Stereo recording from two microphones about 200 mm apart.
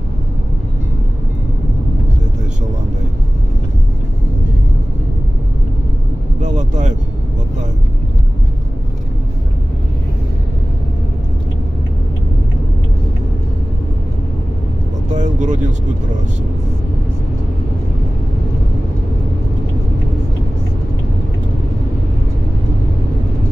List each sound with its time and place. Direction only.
6.4 s vehicle: 35° right (ahead or behind)
15.1 s vehicle: 40° right (ahead or behind)